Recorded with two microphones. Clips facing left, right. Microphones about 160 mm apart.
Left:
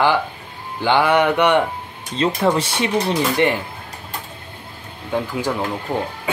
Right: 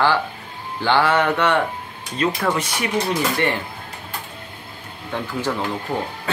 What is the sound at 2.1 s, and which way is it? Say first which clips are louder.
Speech: left 3 dB; 25° left (ahead or behind).